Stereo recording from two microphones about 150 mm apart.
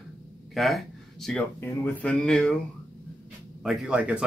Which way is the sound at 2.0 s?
5° left (ahead or behind).